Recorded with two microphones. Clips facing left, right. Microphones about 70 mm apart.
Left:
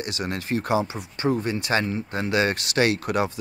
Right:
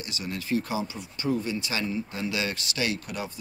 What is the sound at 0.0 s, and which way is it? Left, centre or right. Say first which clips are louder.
Speech: left 5 dB; left.